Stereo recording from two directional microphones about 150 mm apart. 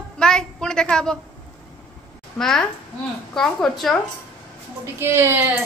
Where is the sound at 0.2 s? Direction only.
5° left (ahead or behind).